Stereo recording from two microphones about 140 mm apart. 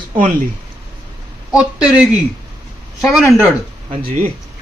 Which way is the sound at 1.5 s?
5° right (ahead or behind).